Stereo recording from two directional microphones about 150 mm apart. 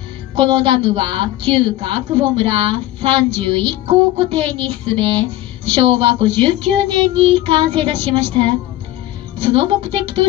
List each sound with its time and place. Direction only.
0.4 s a woman's voice: 35° right (ahead or behind)